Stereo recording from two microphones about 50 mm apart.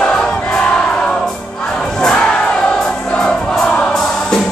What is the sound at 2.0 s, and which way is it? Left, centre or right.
Music, centre.